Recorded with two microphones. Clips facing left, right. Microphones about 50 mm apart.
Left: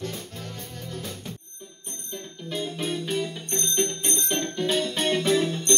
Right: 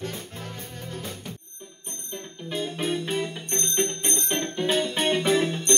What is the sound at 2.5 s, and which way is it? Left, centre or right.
Music, centre.